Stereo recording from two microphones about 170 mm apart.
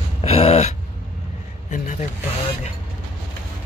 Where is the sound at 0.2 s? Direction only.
35° left (ahead or behind).